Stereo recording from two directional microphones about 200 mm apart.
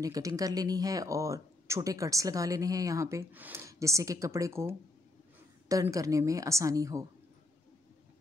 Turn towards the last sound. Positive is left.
turn(degrees=-15)  # may be behind; listen again after turning